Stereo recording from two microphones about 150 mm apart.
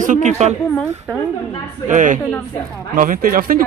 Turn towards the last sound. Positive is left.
turn(degrees=-70)  # may be behind; listen again after turning